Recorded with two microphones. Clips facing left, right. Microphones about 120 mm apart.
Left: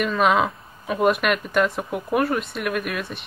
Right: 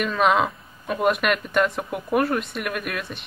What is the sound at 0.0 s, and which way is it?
Speech, centre (ahead or behind).